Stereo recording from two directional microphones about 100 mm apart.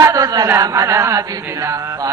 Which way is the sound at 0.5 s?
35° right (ahead or behind).